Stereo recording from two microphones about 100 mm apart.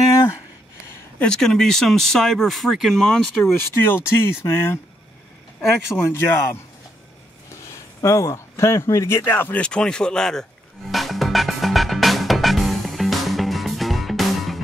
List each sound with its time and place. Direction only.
1.2 s speech: 5° left (ahead or behind)
3.8 s speech: 20° left (ahead or behind)
5.9 s speech: 25° left (ahead or behind)
7.7 s a man's voice: 30° left (ahead or behind)
9.6 s speech: 10° left (ahead or behind)
10.9 s music: centre (ahead or behind)